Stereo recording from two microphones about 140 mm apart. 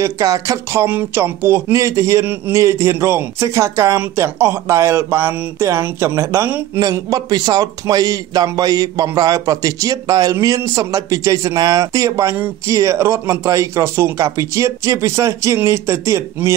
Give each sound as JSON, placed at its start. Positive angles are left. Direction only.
{"t": 0.0, "sound": "a man's voice", "side_deg": -25}